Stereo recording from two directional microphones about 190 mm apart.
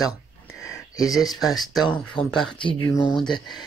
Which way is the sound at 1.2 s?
Centre (ahead or behind).